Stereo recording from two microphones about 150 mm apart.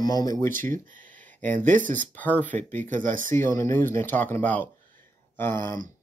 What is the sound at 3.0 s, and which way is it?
Speech, 60° right (ahead or behind).